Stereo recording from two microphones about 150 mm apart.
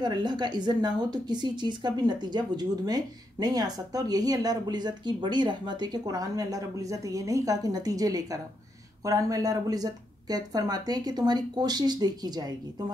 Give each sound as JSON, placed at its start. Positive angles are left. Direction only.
{"t": 0.0, "sound": "a woman's voice", "side_deg": -30}